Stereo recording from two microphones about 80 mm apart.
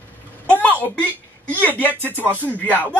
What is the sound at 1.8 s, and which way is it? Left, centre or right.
Speech, left.